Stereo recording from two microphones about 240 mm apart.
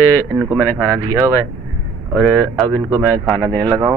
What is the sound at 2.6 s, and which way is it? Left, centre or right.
Speech, centre.